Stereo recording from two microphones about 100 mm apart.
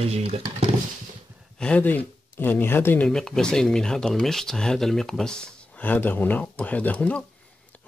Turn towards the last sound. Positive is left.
turn(degrees=15)  # may be behind; listen again after turning